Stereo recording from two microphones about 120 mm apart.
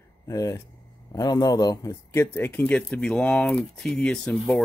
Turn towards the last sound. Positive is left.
turn(degrees=5)  # may be behind; listen again after turning